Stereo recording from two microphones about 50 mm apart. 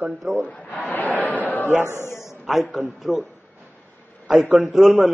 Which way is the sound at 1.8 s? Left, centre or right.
Left.